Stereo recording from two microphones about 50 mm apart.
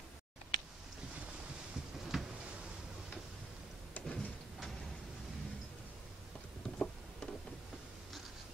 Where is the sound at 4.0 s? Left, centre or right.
Left.